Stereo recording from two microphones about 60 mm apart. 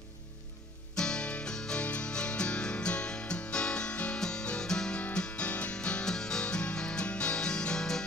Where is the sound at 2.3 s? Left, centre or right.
Centre.